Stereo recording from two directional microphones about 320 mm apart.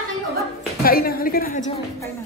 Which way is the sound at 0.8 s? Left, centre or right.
Left.